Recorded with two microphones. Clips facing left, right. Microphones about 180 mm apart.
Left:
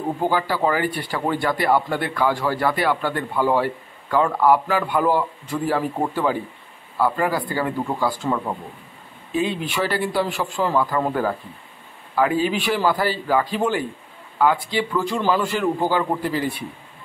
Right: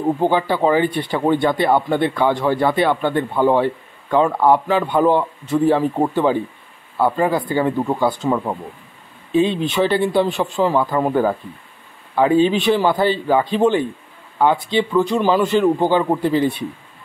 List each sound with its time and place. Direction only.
0.2 s speech: 20° right (ahead or behind)